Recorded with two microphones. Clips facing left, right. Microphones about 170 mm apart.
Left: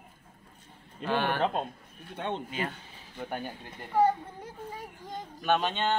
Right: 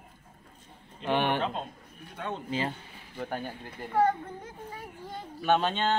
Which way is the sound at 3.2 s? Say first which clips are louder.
Right 1 dB; centre (ahead or behind).